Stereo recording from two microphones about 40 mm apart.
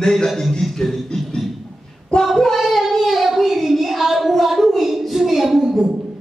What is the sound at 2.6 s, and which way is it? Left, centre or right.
Child singing, centre.